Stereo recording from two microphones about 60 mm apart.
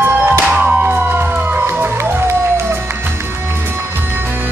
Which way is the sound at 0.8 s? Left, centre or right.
Right.